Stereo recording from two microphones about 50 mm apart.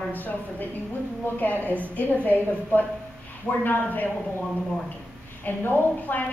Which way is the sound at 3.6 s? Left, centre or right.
Left.